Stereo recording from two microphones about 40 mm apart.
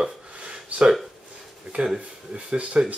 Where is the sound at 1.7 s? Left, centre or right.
Right.